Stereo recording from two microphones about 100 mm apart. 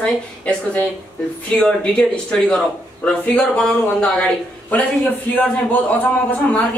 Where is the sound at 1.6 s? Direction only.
10° left (ahead or behind).